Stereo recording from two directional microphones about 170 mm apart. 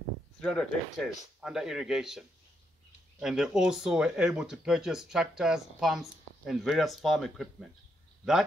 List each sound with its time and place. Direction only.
0.4 s speech: 5° left (ahead or behind)